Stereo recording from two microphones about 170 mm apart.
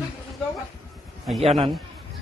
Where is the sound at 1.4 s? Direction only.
35° right (ahead or behind).